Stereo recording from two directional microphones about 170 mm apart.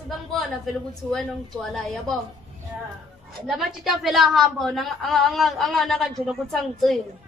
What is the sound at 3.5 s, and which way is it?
A woman's voice, centre (ahead or behind).